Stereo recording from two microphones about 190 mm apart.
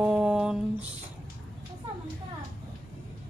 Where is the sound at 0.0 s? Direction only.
5° right (ahead or behind).